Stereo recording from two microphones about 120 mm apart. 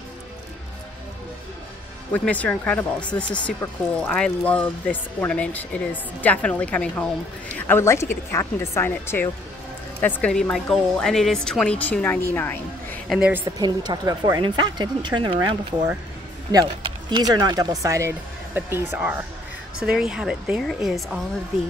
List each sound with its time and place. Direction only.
2.1 s a woman's voice: 10° left (ahead or behind)
13.2 s speech: 15° right (ahead or behind)
13.6 s speech: 35° right (ahead or behind)
16.8 s speech: 35° right (ahead or behind); by 19.2 s 15° right (ahead or behind)
19.8 s a woman's voice: 5° right (ahead or behind)